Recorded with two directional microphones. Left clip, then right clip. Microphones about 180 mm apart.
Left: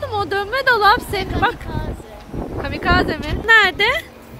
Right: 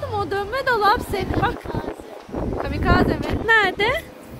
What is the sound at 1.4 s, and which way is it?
Speech, 10° left (ahead or behind).